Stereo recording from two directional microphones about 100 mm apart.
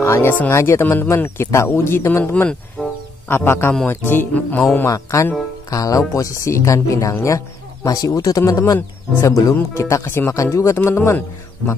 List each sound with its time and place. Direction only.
0.0 s speech: 25° left (ahead or behind)
2.8 s music: centre (ahead or behind)
3.3 s speech: 20° left (ahead or behind)
4.1 s music: 20° left (ahead or behind)
4.8 s speech: 30° left (ahead or behind)